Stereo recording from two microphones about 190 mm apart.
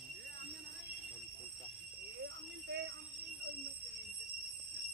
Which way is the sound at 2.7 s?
65° right (ahead or behind).